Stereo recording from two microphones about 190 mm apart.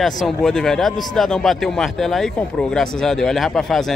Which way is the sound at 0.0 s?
Centre (ahead or behind).